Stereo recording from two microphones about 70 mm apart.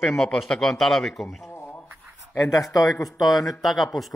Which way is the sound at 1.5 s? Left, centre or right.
Left.